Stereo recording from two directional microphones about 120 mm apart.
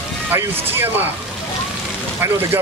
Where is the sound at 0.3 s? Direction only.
20° right (ahead or behind).